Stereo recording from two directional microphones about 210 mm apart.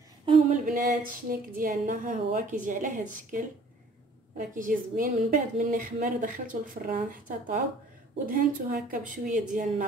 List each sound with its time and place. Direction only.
0.2 s a sound: 25° right (ahead or behind)
0.7 s a woman's voice: 40° right (ahead or behind)
4.4 s a woman's voice: 40° right (ahead or behind)